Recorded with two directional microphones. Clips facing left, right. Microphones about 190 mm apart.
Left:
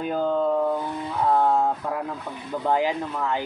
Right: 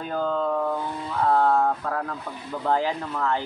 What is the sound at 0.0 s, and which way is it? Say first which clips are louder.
Speech: left 3 dB; 15° left (ahead or behind).